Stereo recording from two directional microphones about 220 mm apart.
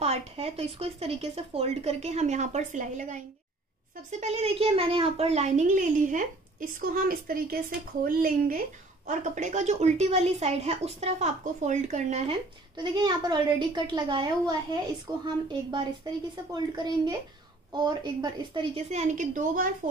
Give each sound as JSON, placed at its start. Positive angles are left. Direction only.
{"t": 0.0, "sound": "a child's voice", "side_deg": -30}
{"t": 4.2, "sound": "a child's voice", "side_deg": -30}
{"t": 16.5, "sound": "a child's voice", "side_deg": -20}